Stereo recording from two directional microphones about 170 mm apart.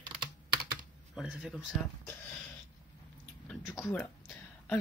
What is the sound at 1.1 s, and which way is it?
Speech, 5° right (ahead or behind).